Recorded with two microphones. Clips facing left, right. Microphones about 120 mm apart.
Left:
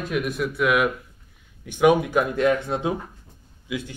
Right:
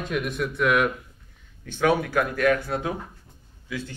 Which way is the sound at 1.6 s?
15° left (ahead or behind).